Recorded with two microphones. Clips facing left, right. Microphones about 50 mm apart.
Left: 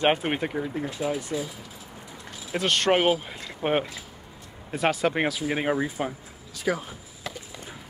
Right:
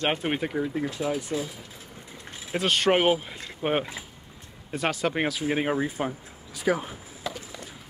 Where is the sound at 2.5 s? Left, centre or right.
Centre.